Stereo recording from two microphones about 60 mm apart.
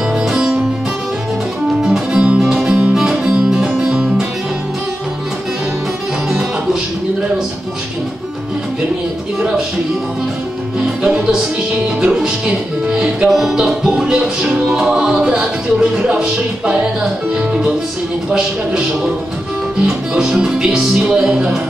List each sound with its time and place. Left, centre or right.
0.3 s music: centre
1.8 s music: centre
3.9 s music: centre
11.0 s music: centre
18.3 s music: centre